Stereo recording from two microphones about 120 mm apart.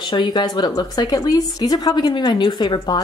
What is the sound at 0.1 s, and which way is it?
A woman's voice, 35° left (ahead or behind).